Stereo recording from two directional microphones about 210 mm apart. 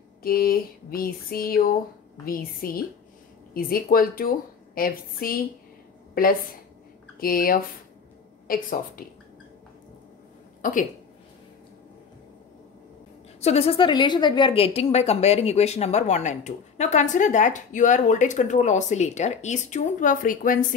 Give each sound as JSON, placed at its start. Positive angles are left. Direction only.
{"t": 0.2, "sound": "a woman's voice", "side_deg": 45}
{"t": 7.2, "sound": "a woman's voice", "side_deg": 45}
{"t": 10.6, "sound": "a woman's voice", "side_deg": 40}
{"t": 13.4, "sound": "a woman's voice", "side_deg": 30}